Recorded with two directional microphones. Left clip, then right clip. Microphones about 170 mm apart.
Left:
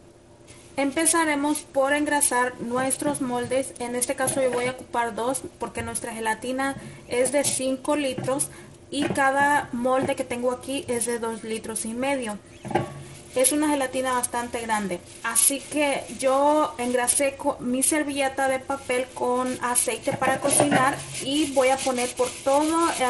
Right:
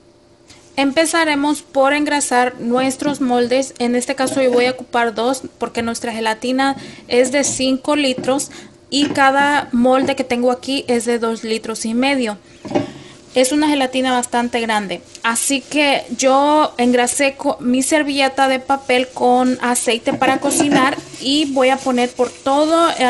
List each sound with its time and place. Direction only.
0.7 s a woman's voice: 50° right (ahead or behind)
21.5 s a woman's voice: 60° right (ahead or behind)